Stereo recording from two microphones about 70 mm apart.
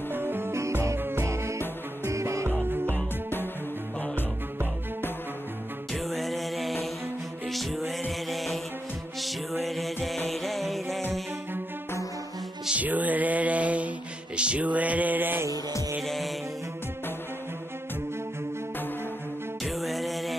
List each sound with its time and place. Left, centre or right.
0.1 s music: right
0.9 s music: right
2.6 s music: right
5.9 s music: centre
12.6 s music: right
16.0 s music: centre
19.6 s music: centre